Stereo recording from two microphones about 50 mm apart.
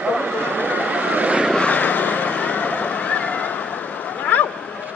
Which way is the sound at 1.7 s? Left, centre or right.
Left.